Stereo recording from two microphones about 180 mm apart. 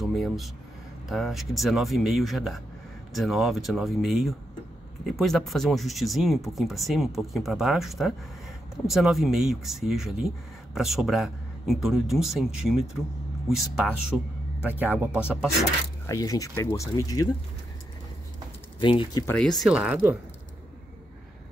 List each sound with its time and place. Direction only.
0.0 s speech: centre (ahead or behind)
16.1 s speech: 20° left (ahead or behind)
18.8 s speech: 25° left (ahead or behind)
19.2 s speech: 5° left (ahead or behind)